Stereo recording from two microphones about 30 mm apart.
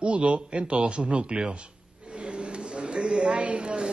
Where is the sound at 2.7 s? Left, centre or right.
Right.